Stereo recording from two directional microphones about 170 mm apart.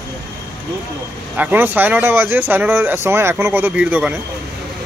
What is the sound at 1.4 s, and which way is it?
Speech, 10° right (ahead or behind).